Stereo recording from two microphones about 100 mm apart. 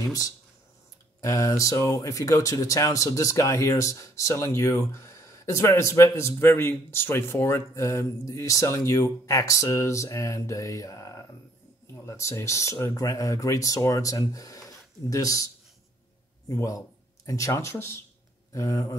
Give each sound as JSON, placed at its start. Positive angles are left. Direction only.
{"t": 0.0, "sound": "speech", "side_deg": 35}